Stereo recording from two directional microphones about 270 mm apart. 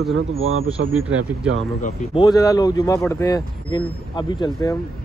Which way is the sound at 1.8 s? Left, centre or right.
Left.